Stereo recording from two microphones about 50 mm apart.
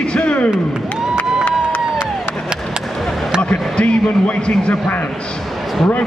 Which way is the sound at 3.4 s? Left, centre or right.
Left.